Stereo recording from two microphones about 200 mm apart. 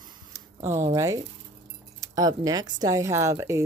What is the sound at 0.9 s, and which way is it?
Speech, 15° right (ahead or behind).